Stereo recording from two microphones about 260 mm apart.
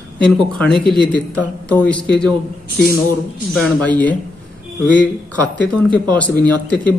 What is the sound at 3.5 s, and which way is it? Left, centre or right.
A man's voice, centre.